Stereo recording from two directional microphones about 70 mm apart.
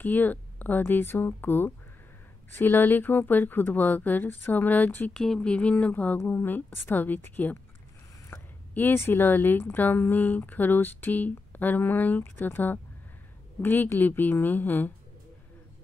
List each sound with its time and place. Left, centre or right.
0.0 s speech: left
5.1 s speech: centre
6.1 s speech: left